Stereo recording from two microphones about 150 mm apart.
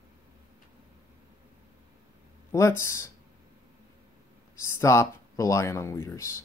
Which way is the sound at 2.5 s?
20° left (ahead or behind).